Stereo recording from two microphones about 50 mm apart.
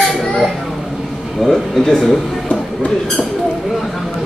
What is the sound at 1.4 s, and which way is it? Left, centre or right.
Speech, centre.